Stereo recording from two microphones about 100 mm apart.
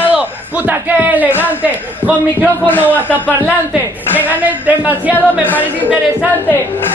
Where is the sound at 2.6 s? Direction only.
20° left (ahead or behind).